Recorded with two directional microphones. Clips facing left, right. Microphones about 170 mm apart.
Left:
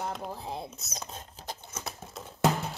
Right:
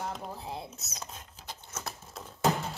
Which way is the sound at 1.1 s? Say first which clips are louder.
Left 4 dB; 30° left (ahead or behind).